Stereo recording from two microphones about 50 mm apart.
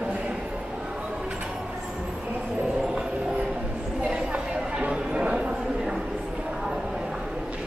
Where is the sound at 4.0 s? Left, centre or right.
Centre.